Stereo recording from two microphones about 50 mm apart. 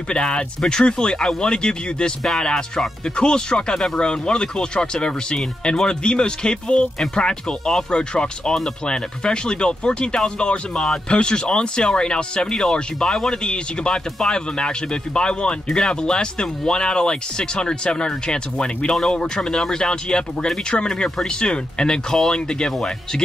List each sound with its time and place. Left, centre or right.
0.1 s speech: centre